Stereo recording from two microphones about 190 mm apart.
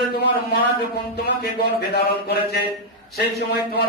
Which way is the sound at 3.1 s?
60° left (ahead or behind).